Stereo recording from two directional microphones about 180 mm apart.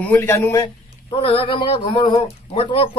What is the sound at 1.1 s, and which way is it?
Speech, 25° left (ahead or behind).